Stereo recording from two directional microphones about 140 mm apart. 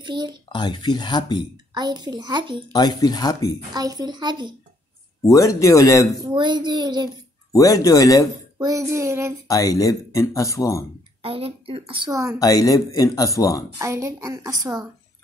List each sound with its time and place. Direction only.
0.0 s speech: 30° right (ahead or behind)
0.5 s speech: 30° left (ahead or behind)
1.7 s a child's voice: 30° right (ahead or behind)
2.7 s speech: 30° left (ahead or behind)
3.7 s a child's voice: 30° right (ahead or behind)
5.2 s speech: 25° left (ahead or behind)
6.3 s a child's voice: 35° right (ahead or behind)
7.5 s speech: 25° left (ahead or behind)
8.5 s a child's voice: 25° right (ahead or behind)
9.5 s speech: 25° left (ahead or behind)
11.2 s a child's voice: 45° right (ahead or behind)
12.1 s a child's voice: 20° right (ahead or behind)
12.4 s speech: 25° left (ahead or behind)
13.7 s a child's voice: 20° right (ahead or behind)